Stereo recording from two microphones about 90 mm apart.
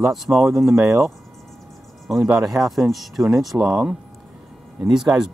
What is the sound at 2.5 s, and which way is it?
Speech, centre (ahead or behind).